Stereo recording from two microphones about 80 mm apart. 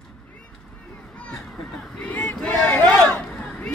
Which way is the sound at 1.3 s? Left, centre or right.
Centre.